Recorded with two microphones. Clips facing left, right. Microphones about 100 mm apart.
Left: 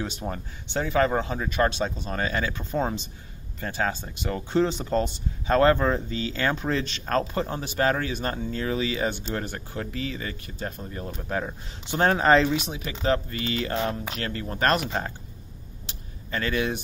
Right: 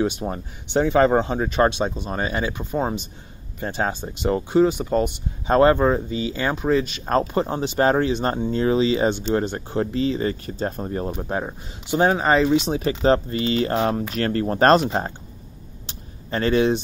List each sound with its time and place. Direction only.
0.0 s speech: 20° right (ahead or behind)
4.6 s speech: 10° right (ahead or behind)
7.1 s speech: 20° right (ahead or behind); by 11.1 s 40° right (ahead or behind)
11.1 s speech: 25° right (ahead or behind)
11.9 s speech: 10° right (ahead or behind)
12.4 s speech: 25° right (ahead or behind)
15.9 s a sound: 30° right (ahead or behind)